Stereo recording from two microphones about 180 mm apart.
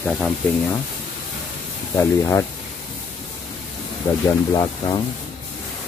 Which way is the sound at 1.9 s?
15° left (ahead or behind).